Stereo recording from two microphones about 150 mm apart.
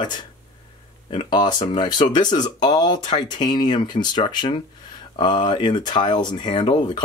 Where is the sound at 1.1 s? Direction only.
30° left (ahead or behind).